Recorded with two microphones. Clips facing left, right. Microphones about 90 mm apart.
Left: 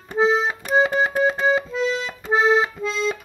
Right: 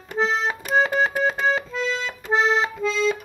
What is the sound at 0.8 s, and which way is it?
Keyboard, 10° left (ahead or behind).